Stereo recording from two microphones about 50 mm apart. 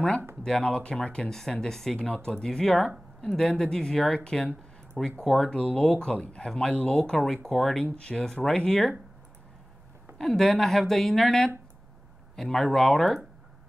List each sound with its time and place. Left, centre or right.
0.4 s speech: centre
2.0 s speech: left; by 7.8 s centre
7.8 s speech: left
10.1 s speech: centre